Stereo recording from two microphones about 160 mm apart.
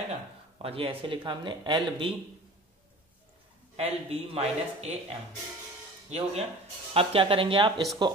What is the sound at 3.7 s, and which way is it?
Speech, 40° right (ahead or behind).